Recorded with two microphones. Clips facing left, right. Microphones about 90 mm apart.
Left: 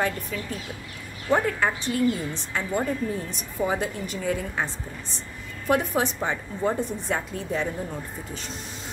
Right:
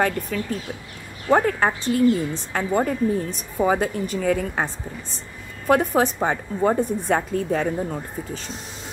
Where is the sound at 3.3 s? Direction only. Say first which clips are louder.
Right 6 dB; 50° right (ahead or behind).